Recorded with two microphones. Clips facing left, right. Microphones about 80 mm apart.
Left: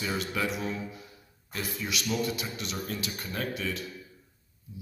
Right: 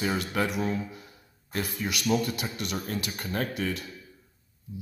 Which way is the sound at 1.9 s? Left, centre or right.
Right.